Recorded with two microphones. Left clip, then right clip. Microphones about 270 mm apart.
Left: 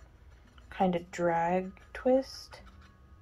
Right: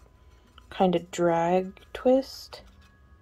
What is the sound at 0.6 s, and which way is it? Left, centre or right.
Speech, right.